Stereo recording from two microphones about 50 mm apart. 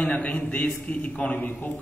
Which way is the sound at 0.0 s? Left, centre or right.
Left.